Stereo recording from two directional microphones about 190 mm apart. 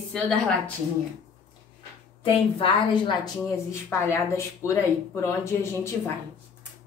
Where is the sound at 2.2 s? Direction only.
25° left (ahead or behind).